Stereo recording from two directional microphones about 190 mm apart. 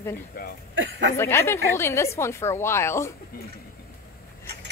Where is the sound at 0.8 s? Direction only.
80° right.